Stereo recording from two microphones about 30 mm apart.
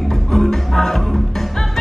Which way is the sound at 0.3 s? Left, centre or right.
Centre.